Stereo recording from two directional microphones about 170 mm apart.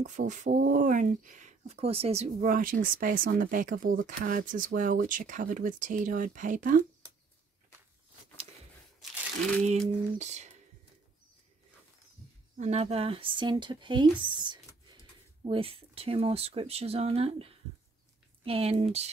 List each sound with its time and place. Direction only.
0.0 s speech: 45° right (ahead or behind)
9.7 s speech: 40° right (ahead or behind)
12.5 s speech: 40° right (ahead or behind)